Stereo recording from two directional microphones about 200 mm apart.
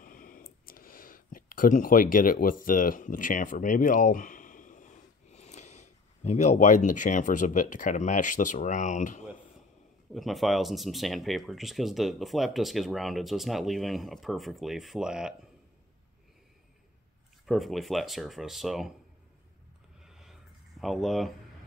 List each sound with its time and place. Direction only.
0.0 s speech: 45° left (ahead or behind)
10.1 s speech: centre (ahead or behind)
17.5 s speech: centre (ahead or behind)
20.1 s a sound: centre (ahead or behind)
20.8 s speech: centre (ahead or behind)